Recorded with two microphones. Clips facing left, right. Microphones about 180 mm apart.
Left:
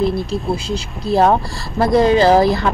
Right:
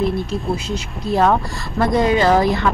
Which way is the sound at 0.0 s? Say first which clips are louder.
Left 2 dB; 35° left (ahead or behind).